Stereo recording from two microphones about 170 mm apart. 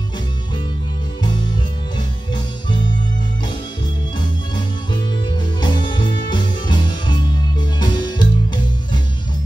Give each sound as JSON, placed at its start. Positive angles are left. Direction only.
{"t": 2.0, "sound": "music", "side_deg": 25}
{"t": 5.6, "sound": "music", "side_deg": 25}